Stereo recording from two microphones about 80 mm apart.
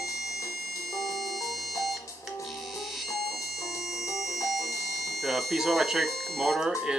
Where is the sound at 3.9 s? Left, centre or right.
Left.